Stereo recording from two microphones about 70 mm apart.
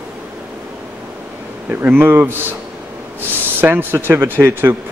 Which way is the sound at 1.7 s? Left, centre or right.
Right.